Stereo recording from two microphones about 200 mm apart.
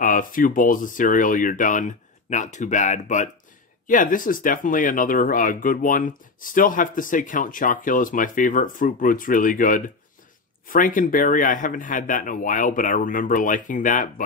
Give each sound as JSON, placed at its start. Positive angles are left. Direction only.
{"t": 0.0, "sound": "speech", "side_deg": 40}